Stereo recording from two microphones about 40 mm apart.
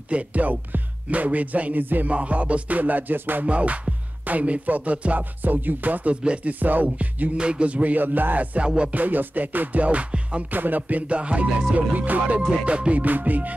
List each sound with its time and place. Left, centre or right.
0.1 s music: right
2.0 s music: right
2.8 s music: right
3.4 s music: right
5.4 s music: right
6.2 s music: right
6.6 s music: right
7.3 s music: right
8.5 s music: right
8.9 s music: right
9.8 s music: right
10.5 s music: right
13.0 s music: right